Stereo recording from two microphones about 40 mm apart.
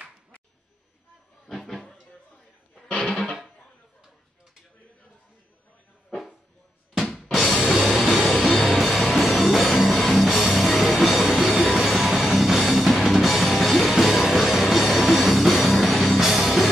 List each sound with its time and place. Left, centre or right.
1.5 s a sound: centre
3.0 s music: left
6.0 s dog: centre
7.1 s drum kit: centre
7.5 s music: centre
8.3 s music: centre